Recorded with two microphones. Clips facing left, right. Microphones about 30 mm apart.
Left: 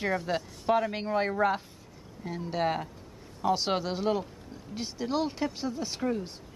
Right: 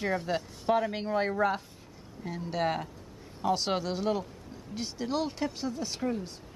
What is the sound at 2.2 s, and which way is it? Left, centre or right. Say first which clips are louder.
Hammer: left 1 dB; centre.